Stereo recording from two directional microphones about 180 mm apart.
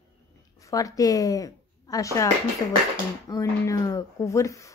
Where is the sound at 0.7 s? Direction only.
20° left (ahead or behind).